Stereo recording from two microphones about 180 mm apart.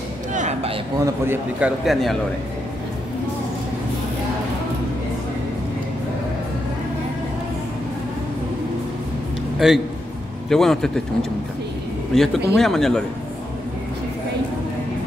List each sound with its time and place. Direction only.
0.3 s a sound: 40° right (ahead or behind)
0.9 s a man's voice: 15° right (ahead or behind)
1.9 s speech: centre (ahead or behind)
9.6 s speech: centre (ahead or behind)
12.1 s speech: centre (ahead or behind)